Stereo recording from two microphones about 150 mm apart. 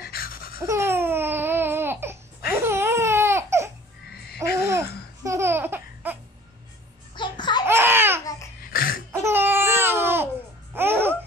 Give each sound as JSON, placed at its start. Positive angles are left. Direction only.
{"t": 0.0, "sound": "babbling", "side_deg": 80}
{"t": 0.7, "sound": "babbling", "side_deg": -20}
{"t": 4.4, "sound": "laughter", "side_deg": -20}
{"t": 7.2, "sound": "babbling", "side_deg": 30}
{"t": 7.6, "sound": "a sound", "side_deg": -15}
{"t": 8.6, "sound": "a sound", "side_deg": 75}
{"t": 9.1, "sound": "babbling", "side_deg": -15}